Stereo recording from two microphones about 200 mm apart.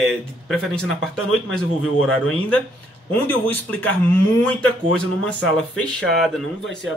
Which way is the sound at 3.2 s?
10° left (ahead or behind).